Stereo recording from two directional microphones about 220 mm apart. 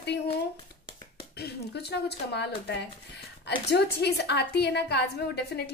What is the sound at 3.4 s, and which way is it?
A woman's voice, 50° left (ahead or behind).